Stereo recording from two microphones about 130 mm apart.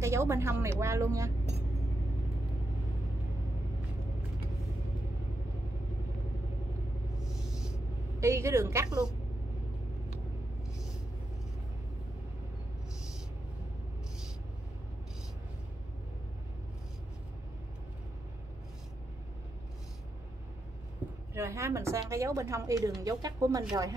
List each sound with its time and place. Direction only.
0.0 s a woman's voice: 20° right (ahead or behind)
8.2 s a woman's voice: 20° right (ahead or behind)
21.4 s a woman's voice: 20° right (ahead or behind)